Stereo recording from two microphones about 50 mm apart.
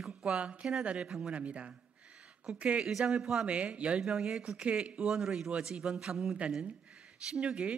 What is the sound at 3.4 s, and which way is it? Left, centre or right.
Speech, right.